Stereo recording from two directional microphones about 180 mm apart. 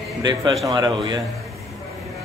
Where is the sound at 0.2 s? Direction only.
25° right (ahead or behind).